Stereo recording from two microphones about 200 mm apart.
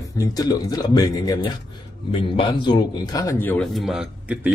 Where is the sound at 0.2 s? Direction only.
20° left (ahead or behind).